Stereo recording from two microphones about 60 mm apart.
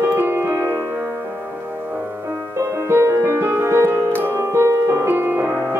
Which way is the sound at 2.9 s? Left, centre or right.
Right.